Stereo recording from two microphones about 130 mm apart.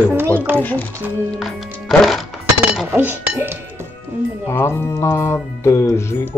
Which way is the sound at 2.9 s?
15° right (ahead or behind).